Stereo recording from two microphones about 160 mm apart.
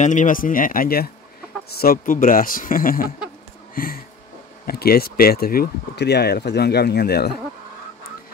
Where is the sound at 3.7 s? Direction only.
65° left (ahead or behind).